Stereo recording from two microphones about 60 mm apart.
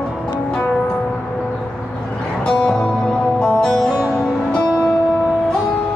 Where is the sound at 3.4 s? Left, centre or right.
Centre.